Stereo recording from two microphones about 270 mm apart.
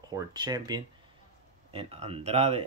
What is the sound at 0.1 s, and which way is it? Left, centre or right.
Speech, centre.